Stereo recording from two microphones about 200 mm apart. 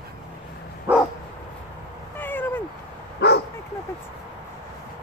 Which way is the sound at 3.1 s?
55° left (ahead or behind).